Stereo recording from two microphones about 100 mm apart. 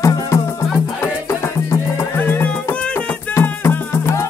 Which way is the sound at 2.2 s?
15° left (ahead or behind).